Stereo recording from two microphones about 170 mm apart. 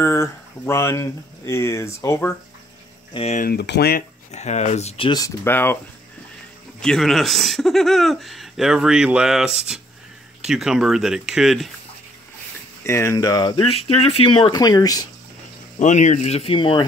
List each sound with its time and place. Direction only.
0.0 s speech: 15° left (ahead or behind)
3.1 s speech: 35° left (ahead or behind)
3.3 s speech: 70° left (ahead or behind)
4.3 s speech: 40° left (ahead or behind); by 5.8 s 15° left (ahead or behind)
6.8 s speech: 5° left (ahead or behind)
12.8 s speech: 15° left (ahead or behind)
15.8 s speech: 45° left (ahead or behind); by 16.8 s 30° left (ahead or behind)